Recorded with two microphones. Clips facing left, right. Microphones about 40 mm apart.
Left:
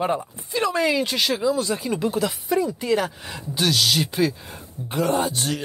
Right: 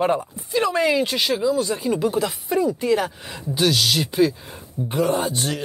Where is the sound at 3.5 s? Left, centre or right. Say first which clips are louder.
Right 1 dB; centre.